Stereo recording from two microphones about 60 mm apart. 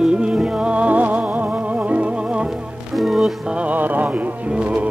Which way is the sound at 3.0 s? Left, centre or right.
Centre.